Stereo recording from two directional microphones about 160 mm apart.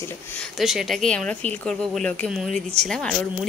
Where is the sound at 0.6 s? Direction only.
Centre (ahead or behind).